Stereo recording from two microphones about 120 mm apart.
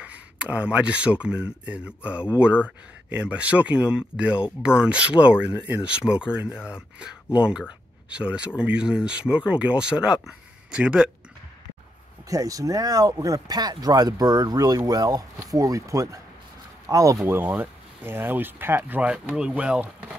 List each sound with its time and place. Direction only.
0.0 s speech: 10° right (ahead or behind)
12.3 s speech: 30° right (ahead or behind); by 20.2 s 10° right (ahead or behind)